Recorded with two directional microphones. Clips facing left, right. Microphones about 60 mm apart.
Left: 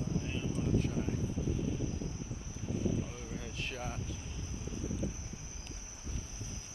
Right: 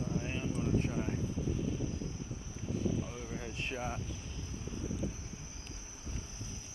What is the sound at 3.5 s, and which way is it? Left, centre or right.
Speech, right.